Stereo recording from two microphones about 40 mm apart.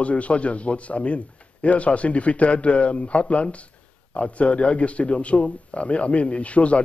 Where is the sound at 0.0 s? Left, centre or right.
Left.